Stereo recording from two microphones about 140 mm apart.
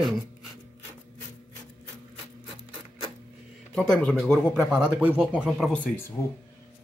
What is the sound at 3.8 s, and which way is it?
Speech, 5° left (ahead or behind).